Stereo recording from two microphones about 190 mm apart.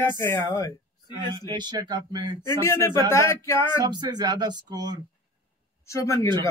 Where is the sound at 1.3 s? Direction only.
25° right (ahead or behind).